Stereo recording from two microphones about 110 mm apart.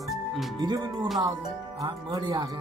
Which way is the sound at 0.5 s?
40° right (ahead or behind).